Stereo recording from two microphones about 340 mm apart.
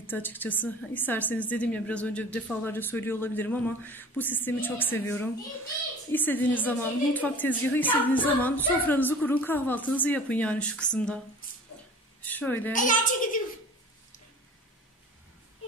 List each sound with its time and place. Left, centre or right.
0.0 s a woman's voice: centre
12.2 s a woman's voice: centre
12.7 s a woman's voice: left